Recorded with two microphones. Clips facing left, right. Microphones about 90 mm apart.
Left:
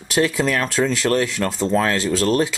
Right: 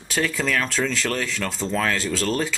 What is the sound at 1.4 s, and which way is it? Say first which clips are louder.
Speech: left 6 dB; 30° left (ahead or behind).